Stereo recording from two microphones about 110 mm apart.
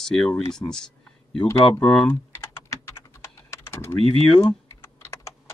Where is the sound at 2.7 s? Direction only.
25° left (ahead or behind).